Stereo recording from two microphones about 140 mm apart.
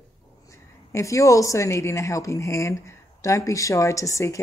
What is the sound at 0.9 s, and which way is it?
A woman's voice, 20° left (ahead or behind).